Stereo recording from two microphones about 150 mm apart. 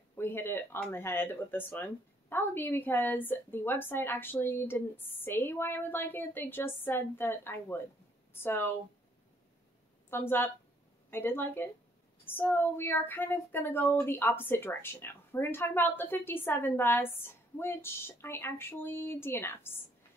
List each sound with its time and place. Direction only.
0.1 s a woman's voice: 15° left (ahead or behind)
10.0 s speech: 15° left (ahead or behind)